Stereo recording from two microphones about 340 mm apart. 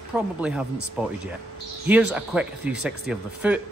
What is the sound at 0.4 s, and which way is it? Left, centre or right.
Speech, centre.